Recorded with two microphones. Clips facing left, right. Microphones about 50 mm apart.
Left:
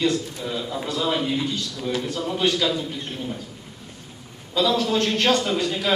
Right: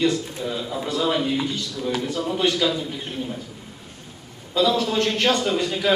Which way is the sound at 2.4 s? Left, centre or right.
Centre.